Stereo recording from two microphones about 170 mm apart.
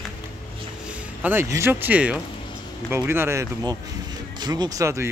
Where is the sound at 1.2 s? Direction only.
15° right (ahead or behind).